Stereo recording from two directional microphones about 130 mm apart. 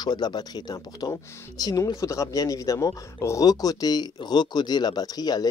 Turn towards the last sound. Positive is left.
turn(degrees=30)  # may be behind; listen again after turning